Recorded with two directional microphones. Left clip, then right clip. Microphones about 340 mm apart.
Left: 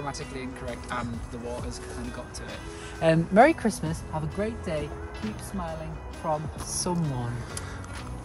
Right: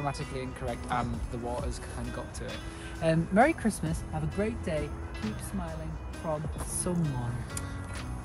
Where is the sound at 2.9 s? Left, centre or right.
Left.